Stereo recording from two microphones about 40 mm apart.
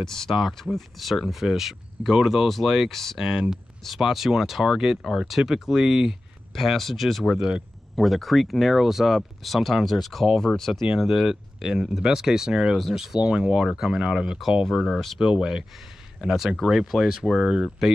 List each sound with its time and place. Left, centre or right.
0.0 s speech: centre
2.9 s speech: centre
3.2 s speech: centre
6.5 s speech: centre
10.4 s speech: centre
11.2 s speech: centre
13.3 s speech: right
13.7 s speech: centre
13.9 s speech: right
14.6 s speech: centre
15.1 s speech: centre
16.2 s speech: centre